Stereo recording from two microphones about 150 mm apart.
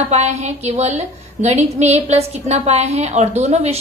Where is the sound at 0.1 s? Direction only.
50° right (ahead or behind).